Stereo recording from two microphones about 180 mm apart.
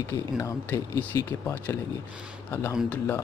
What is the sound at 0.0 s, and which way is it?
Speech, 15° left (ahead or behind).